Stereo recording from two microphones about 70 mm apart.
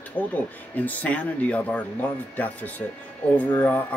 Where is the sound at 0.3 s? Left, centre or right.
Left.